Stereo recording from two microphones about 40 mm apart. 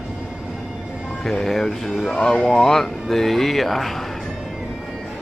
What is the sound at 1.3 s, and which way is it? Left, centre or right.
Mantra, centre.